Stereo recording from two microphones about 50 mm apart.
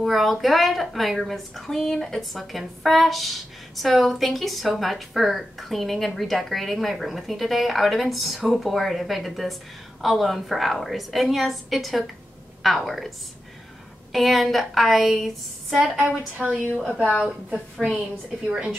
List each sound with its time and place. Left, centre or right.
0.0 s a woman's voice: centre
14.1 s a woman's voice: centre
16.1 s speech: right
17.9 s a woman's voice: centre